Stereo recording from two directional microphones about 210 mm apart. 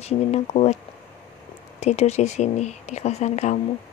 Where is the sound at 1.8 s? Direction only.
30° left (ahead or behind).